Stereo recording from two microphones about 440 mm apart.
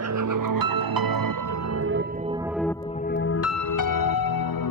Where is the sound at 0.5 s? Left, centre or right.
Right.